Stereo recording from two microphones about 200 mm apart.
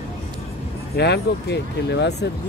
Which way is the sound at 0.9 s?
55° left (ahead or behind).